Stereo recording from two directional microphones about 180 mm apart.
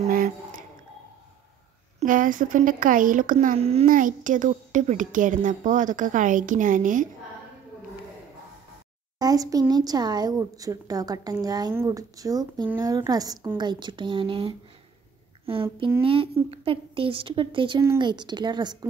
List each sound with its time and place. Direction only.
0.1 s squish: 50° right (ahead or behind)
2.0 s a woman's voice: 50° right (ahead or behind)
3.5 s a child's voice: 35° right (ahead or behind)
3.8 s a woman's voice: 50° right (ahead or behind)
9.2 s a woman's voice: 20° right (ahead or behind)